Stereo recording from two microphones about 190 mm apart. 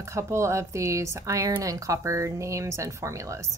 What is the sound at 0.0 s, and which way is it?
A woman's voice, 15° right (ahead or behind).